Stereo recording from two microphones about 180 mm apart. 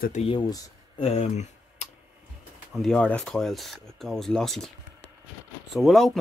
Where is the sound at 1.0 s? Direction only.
40° left (ahead or behind).